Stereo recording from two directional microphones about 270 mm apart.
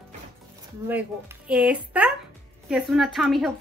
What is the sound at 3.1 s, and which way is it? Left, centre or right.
Speech, centre.